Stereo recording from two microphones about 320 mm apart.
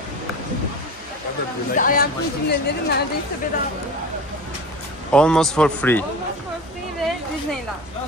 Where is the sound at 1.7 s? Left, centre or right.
Left.